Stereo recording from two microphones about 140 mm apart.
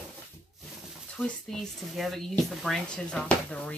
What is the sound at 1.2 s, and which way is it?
Speech, 5° left (ahead or behind).